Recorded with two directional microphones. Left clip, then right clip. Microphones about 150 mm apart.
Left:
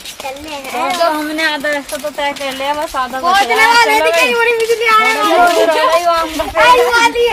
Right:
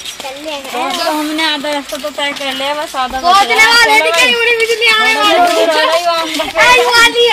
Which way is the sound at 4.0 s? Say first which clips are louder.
Right 1 dB; 10° right (ahead or behind).